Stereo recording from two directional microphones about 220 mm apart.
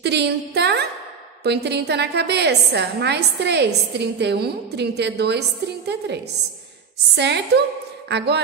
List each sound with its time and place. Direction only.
0.0 s a woman's voice: 50° right (ahead or behind)